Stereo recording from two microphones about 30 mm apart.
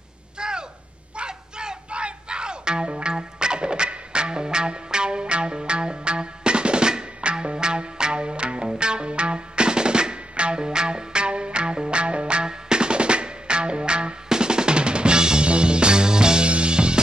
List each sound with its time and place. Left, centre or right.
0.4 s a sound: right
1.9 s music: right
7.5 s music: right
16.4 s music: right